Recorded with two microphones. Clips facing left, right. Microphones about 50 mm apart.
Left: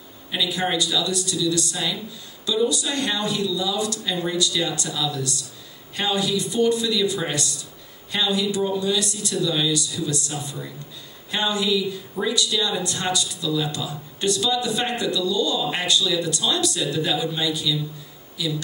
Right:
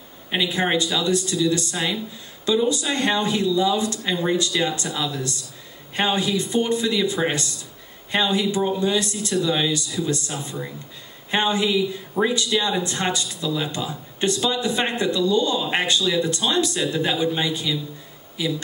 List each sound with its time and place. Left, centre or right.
0.3 s speech: right